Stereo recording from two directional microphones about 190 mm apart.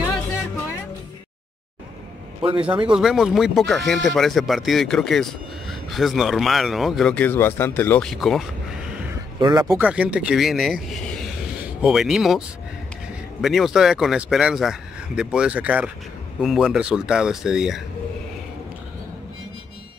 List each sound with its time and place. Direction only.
2.4 s speech: 25° right (ahead or behind)
2.9 s speech: centre (ahead or behind)
9.4 s speech: 20° right (ahead or behind)
9.7 s speech: 5° right (ahead or behind)